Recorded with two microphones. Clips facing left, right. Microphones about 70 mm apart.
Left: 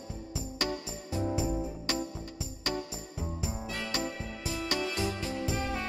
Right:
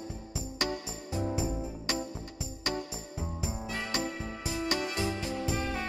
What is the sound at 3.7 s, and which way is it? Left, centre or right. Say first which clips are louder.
Music: right 1 dB; right.